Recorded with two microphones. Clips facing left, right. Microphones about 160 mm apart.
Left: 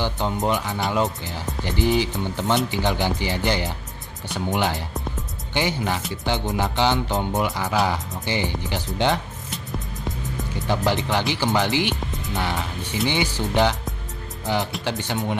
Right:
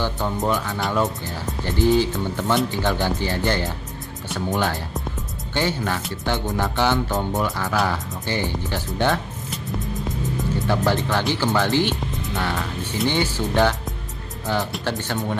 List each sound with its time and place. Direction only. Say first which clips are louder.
0.0 s speech: even; 20° left (ahead or behind)
9.5 s music: right 4 dB; centre (ahead or behind)
10.7 s speech: even; 15° left (ahead or behind)
12.1 s music: right 2 dB; centre (ahead or behind)
12.4 s speech: even; 20° left (ahead or behind)
14.4 s speech: even; 20° left (ahead or behind)